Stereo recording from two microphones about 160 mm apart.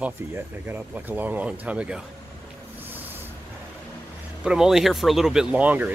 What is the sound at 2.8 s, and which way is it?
Music, 10° right (ahead or behind).